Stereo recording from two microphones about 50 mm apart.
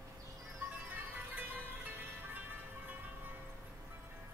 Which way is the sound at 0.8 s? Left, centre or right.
Right.